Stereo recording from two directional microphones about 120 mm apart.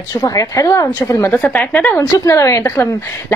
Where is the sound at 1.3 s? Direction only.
10° left (ahead or behind).